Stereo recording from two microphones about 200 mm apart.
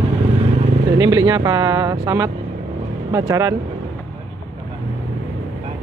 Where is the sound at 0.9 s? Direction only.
20° right (ahead or behind).